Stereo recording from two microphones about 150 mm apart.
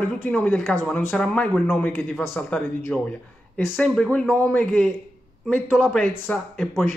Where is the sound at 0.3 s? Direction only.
5° left (ahead or behind).